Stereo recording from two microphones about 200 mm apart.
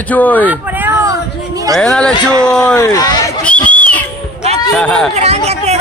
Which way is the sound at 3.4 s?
5° left (ahead or behind).